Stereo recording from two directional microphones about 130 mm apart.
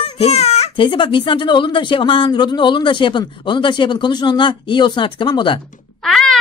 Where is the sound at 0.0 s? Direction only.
55° left (ahead or behind).